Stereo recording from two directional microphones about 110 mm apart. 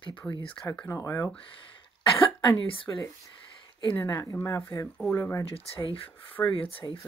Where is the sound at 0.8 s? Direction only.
30° left (ahead or behind).